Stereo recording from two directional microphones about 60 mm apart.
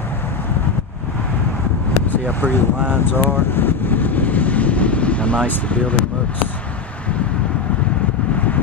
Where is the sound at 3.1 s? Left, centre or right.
Left.